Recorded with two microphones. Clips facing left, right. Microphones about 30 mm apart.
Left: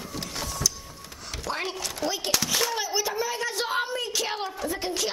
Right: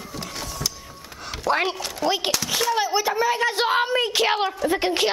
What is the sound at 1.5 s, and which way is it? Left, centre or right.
Speech, right.